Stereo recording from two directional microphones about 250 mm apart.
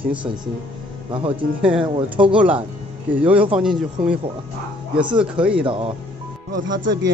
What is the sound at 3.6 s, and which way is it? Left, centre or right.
Speech, centre.